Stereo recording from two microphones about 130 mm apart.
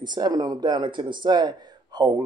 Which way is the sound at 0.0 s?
35° right (ahead or behind).